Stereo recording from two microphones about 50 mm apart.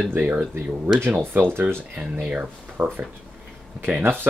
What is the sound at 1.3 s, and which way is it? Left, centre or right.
Speech, right.